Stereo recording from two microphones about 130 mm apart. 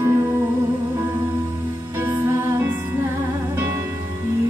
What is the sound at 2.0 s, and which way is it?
Music, 15° right (ahead or behind).